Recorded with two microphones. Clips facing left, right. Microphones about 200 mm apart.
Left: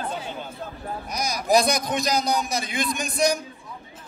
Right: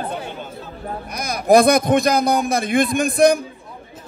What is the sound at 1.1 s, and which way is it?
A man's voice, 55° right (ahead or behind).